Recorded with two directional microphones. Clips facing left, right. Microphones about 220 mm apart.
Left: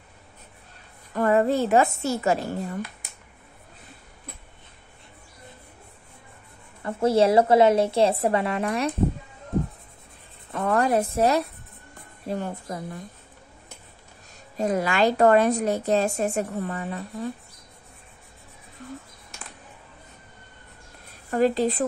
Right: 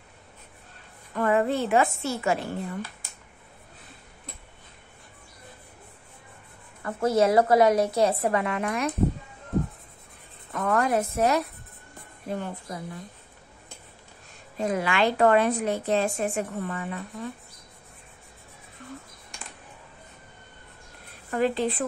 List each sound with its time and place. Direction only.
1.1 s a woman's voice: 40° left (ahead or behind)
6.8 s a woman's voice: 30° left (ahead or behind)
10.5 s a woman's voice: 30° left (ahead or behind)
14.6 s a woman's voice: 40° left (ahead or behind)
21.3 s a woman's voice: 40° left (ahead or behind)